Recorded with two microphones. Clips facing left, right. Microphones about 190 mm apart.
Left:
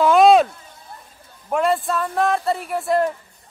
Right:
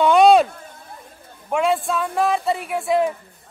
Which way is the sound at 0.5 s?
55° right (ahead or behind).